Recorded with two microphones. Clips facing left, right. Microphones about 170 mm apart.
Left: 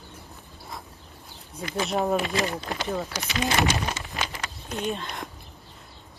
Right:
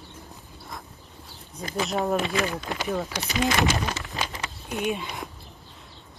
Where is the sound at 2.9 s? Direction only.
Centre (ahead or behind).